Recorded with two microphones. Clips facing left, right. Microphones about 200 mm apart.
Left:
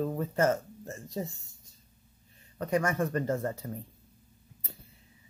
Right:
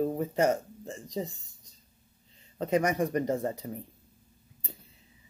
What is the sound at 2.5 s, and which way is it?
Speech, 20° right (ahead or behind).